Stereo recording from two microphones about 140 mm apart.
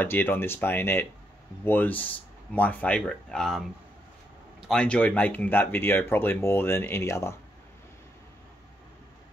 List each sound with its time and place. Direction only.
0.0 s speech: 15° left (ahead or behind)